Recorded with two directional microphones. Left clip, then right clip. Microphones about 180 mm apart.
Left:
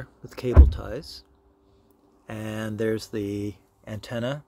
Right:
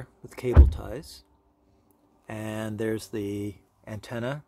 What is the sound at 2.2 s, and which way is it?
Speech, 5° right (ahead or behind).